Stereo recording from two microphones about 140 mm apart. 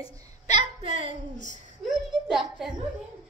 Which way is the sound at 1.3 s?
60° right (ahead or behind).